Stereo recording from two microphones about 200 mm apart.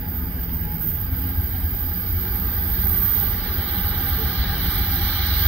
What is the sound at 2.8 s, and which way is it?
Vehicle, centre (ahead or behind).